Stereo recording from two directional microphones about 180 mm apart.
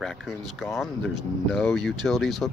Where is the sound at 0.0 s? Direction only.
Centre (ahead or behind).